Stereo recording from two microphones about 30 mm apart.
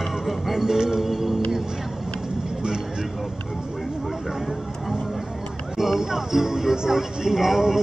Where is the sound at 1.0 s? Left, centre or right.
Centre.